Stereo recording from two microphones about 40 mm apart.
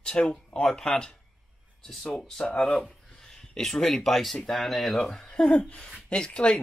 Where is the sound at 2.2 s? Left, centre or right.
Centre.